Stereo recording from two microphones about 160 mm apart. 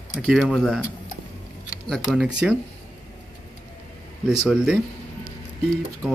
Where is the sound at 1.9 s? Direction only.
Centre (ahead or behind).